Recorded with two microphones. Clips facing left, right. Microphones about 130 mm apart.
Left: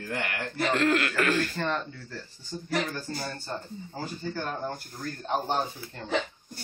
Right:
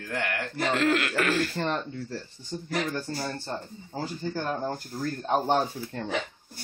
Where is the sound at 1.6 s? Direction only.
25° right (ahead or behind).